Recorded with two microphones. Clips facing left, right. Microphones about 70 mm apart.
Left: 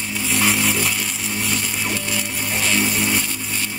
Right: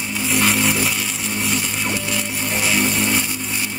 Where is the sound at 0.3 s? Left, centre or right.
Centre.